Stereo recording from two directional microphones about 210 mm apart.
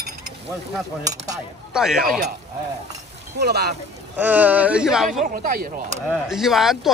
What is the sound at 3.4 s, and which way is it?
Speech, 50° right (ahead or behind).